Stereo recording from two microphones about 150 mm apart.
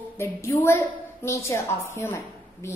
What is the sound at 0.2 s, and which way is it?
A woman's voice, 20° left (ahead or behind).